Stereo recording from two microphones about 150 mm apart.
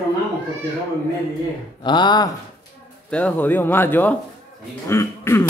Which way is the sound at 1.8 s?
30° left (ahead or behind).